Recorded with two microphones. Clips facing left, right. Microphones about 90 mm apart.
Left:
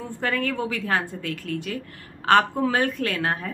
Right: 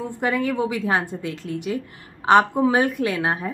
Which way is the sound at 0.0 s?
15° right (ahead or behind).